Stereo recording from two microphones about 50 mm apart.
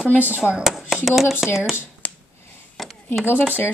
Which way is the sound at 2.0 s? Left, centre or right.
Left.